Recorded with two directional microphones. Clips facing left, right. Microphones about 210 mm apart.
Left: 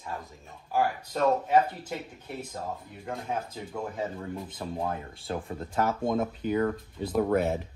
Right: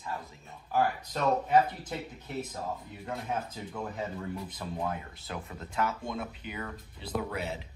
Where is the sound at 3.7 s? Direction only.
25° left (ahead or behind).